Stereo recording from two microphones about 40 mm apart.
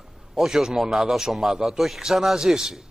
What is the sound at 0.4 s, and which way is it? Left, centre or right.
A man's voice, centre.